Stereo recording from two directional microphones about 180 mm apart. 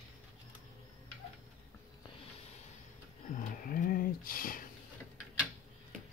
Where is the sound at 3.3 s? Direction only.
50° left (ahead or behind).